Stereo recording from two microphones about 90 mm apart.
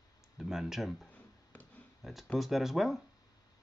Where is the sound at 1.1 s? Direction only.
20° left (ahead or behind).